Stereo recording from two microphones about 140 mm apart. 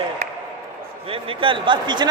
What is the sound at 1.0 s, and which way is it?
A man's voice, 40° right (ahead or behind).